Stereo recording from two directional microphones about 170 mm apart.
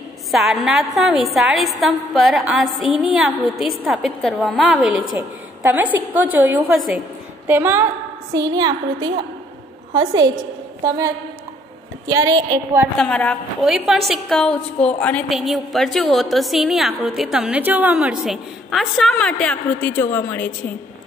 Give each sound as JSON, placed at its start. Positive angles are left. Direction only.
{"t": 0.3, "sound": "a woman's voice", "side_deg": 0}
{"t": 8.3, "sound": "a woman's voice", "side_deg": -25}
{"t": 12.1, "sound": "a woman's voice", "side_deg": -20}
{"t": 12.9, "sound": "a woman's voice", "side_deg": 5}